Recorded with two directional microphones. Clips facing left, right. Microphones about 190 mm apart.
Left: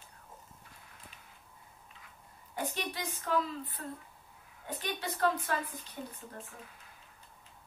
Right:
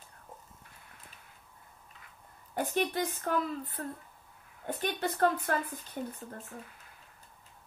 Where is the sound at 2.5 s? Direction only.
50° right (ahead or behind).